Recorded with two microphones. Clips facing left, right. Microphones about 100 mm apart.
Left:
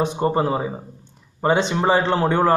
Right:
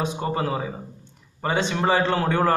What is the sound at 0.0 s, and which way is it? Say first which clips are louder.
A man's voice: left 5 dB; 30° left (ahead or behind).